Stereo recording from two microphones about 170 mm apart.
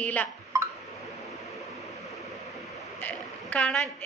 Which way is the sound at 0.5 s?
15° right (ahead or behind).